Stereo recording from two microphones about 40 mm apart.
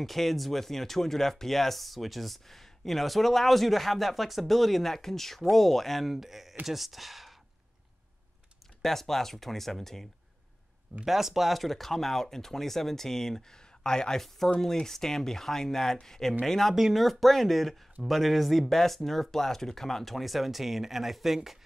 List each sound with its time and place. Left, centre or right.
0.0 s speech: centre
8.8 s speech: centre
11.1 s speech: centre
16.7 s speech: centre